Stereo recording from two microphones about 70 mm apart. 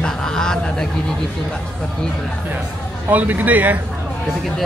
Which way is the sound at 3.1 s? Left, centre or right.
Right.